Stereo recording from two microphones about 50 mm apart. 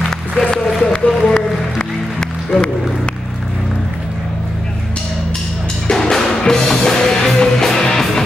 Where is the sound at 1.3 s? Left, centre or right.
Centre.